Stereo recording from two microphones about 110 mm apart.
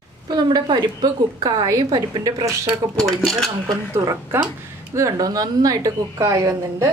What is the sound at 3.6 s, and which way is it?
A woman's voice, 30° right (ahead or behind).